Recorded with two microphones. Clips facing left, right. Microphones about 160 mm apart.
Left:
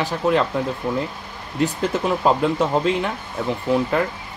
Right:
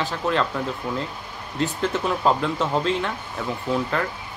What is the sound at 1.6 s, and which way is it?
Speech, 15° left (ahead or behind).